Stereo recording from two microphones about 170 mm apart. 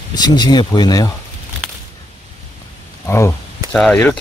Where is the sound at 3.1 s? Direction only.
15° left (ahead or behind).